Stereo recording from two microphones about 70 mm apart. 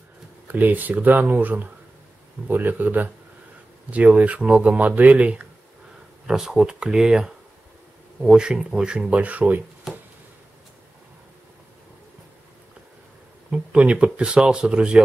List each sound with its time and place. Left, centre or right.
0.5 s speech: right
9.9 s a sound: centre
13.5 s speech: centre